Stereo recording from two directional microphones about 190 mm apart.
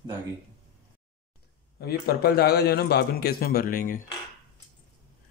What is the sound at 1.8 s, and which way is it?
A man's voice, 55° left (ahead or behind).